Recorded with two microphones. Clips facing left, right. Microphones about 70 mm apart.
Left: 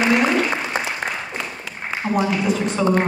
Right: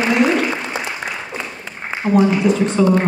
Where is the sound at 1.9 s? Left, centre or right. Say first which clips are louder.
Right 1 dB; right.